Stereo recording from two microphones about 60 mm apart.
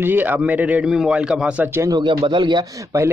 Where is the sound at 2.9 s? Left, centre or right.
Right.